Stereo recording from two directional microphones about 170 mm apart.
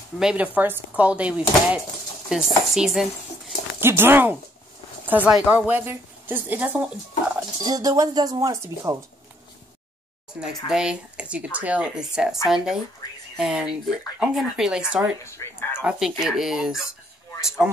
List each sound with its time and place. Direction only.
0.2 s a woman's voice: 5° right (ahead or behind)
3.8 s a woman's voice: 15° right (ahead or behind)
7.3 s speech: 20° right (ahead or behind)
10.4 s speech: 5° right (ahead or behind)
13.4 s speech: 5° right (ahead or behind)
15.2 s speech: 15° left (ahead or behind)
15.8 s speech: 5° right (ahead or behind)